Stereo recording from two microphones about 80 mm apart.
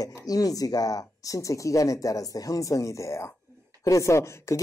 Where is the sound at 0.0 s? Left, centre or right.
Left.